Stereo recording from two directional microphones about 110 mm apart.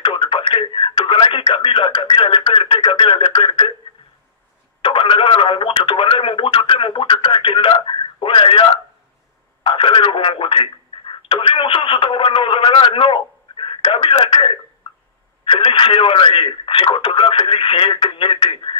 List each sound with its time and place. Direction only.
0.0 s speech: 55° left (ahead or behind)
4.8 s speech: 55° left (ahead or behind)